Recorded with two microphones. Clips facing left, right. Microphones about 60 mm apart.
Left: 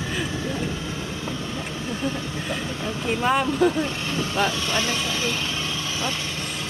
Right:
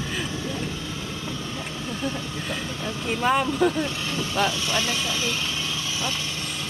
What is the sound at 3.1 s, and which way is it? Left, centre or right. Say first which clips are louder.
Speech: left 1 dB; centre.